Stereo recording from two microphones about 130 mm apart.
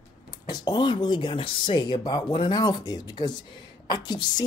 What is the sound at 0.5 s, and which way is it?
A woman's voice, 35° left (ahead or behind).